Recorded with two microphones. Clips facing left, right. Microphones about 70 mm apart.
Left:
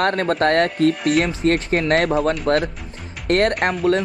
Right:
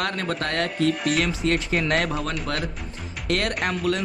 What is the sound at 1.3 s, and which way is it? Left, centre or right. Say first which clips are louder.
Speech: left 5 dB; left.